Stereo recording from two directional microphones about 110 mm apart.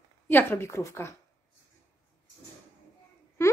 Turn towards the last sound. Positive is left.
turn(degrees=25)  # may be behind; listen again after turning